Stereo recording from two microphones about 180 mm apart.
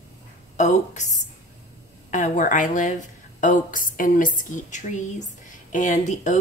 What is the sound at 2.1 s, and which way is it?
Speech, 45° left (ahead or behind).